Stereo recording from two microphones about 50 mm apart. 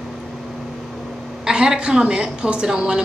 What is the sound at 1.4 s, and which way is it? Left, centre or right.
A woman's voice, centre.